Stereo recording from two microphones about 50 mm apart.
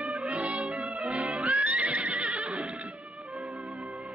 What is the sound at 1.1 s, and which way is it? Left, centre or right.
Music, right.